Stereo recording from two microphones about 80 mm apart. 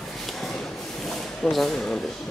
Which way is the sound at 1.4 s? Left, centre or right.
Centre.